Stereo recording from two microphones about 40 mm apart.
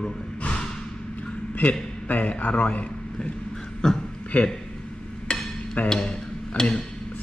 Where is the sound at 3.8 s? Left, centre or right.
Centre.